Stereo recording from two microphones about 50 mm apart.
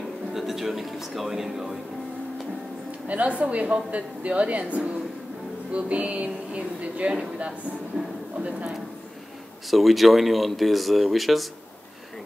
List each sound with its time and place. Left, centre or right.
0.3 s speech: centre
3.1 s a woman's voice: right
8.4 s a woman's voice: right
9.7 s speech: centre